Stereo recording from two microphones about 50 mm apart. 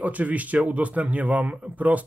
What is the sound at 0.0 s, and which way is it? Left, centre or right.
A man's voice, right.